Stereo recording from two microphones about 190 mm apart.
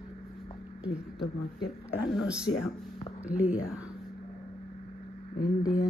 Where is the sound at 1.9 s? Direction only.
5° right (ahead or behind).